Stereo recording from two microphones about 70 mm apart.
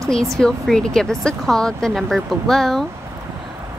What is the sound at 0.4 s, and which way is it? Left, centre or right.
Speech, centre.